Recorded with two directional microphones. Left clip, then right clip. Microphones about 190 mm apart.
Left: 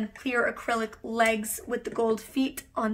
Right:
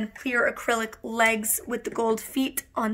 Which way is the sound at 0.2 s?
40° right (ahead or behind).